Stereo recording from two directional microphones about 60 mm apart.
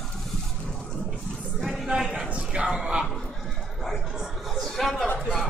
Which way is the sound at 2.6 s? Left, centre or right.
Centre.